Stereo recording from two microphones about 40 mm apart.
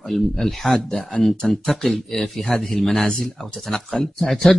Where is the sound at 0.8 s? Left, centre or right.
Left.